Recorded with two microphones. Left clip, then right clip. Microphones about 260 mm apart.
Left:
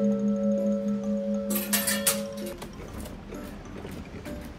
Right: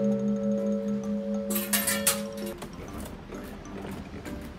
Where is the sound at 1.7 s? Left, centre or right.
Centre.